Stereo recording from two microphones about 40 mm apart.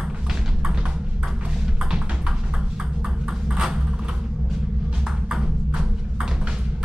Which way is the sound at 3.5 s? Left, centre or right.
Centre.